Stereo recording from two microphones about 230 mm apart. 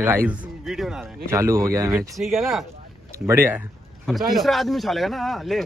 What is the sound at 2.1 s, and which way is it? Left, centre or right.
Speech, centre.